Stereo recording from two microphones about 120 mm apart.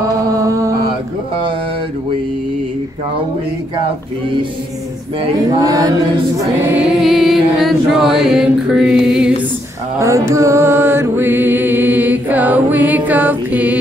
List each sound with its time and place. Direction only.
0.4 s mantra: 25° right (ahead or behind)
5.5 s chant: 30° right (ahead or behind)
6.6 s music: 15° right (ahead or behind)
6.9 s music: centre (ahead or behind)
9.9 s music: 25° right (ahead or behind)